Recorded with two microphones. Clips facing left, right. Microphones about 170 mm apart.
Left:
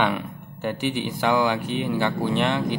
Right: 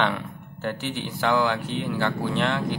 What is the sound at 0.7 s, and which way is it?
Speech, 15° left (ahead or behind).